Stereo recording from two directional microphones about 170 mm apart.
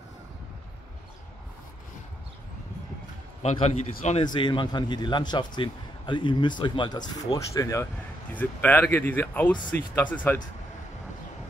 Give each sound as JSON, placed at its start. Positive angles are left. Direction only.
{"t": 3.4, "sound": "a man's voice", "side_deg": 40}
{"t": 4.2, "sound": "a man's voice", "side_deg": 25}